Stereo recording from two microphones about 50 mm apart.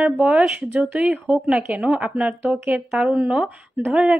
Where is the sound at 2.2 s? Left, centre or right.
Right.